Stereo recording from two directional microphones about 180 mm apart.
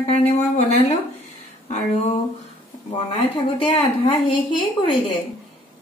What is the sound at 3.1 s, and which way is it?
A woman's voice, 30° left (ahead or behind).